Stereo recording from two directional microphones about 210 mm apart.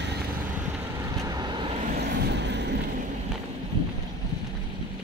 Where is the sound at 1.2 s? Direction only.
20° right (ahead or behind).